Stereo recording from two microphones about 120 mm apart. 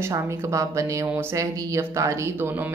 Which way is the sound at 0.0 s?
25° right (ahead or behind).